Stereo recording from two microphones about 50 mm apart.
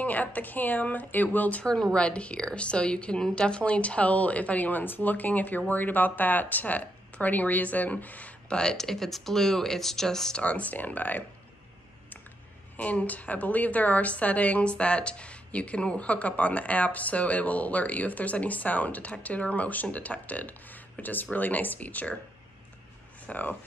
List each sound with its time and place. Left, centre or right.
0.0 s speech: left
1.6 s a woman's voice: centre
8.5 s speech: centre
10.3 s speech: left
12.7 s a woman's voice: left
23.2 s speech: left